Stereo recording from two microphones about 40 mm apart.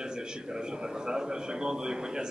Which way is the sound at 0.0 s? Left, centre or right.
Right.